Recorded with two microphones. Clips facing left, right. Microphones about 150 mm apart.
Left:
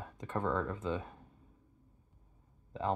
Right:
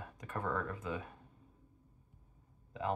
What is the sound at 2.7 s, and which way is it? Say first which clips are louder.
Speech: left 2 dB; 30° left (ahead or behind).